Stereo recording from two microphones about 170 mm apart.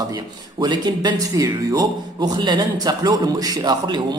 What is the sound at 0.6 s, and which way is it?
Speech, 25° right (ahead or behind).